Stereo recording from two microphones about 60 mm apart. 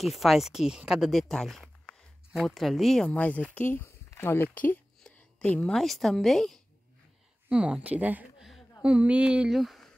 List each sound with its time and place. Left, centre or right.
0.0 s speech: centre
1.3 s a sound: centre
2.4 s speech: centre
3.1 s speech: left
5.0 s speech: centre
7.4 s speech: centre
8.4 s a sound: centre
8.8 s speech: right
9.5 s speech: centre